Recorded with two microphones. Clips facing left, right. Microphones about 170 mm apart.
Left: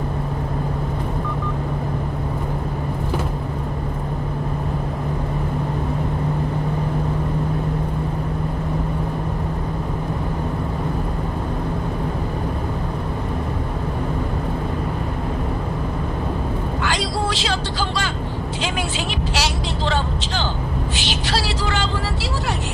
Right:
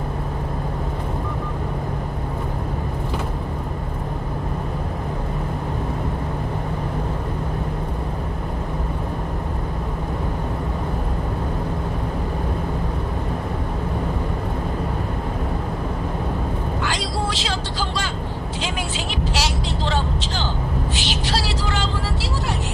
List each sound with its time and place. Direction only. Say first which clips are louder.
16.8 s vehicle: left 3 dB; 70° left (ahead or behind)
19.3 s vehicle: left 1 dB; 70° left (ahead or behind)